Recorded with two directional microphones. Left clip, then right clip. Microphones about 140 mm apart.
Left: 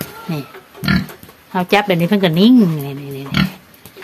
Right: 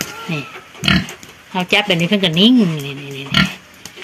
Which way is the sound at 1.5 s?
10° left (ahead or behind).